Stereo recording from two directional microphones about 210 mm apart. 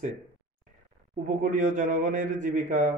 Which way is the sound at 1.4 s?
35° right (ahead or behind).